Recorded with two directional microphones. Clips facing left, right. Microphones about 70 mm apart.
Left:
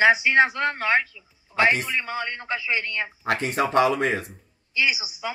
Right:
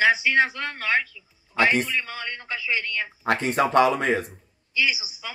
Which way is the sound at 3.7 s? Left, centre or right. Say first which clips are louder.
Even; right.